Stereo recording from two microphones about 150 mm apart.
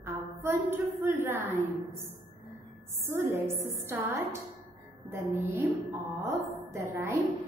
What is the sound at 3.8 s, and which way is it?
Speech, 15° right (ahead or behind).